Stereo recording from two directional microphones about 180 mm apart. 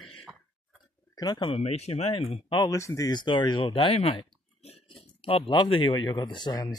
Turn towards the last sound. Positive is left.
turn(degrees=25)  # may be behind; listen again after turning